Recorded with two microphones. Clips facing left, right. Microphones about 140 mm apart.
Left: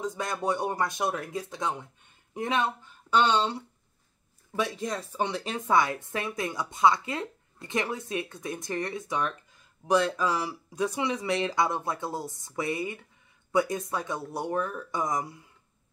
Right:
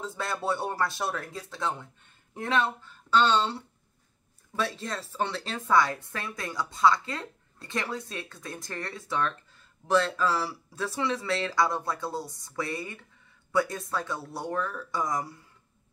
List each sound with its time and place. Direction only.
0.0 s speech: 15° left (ahead or behind)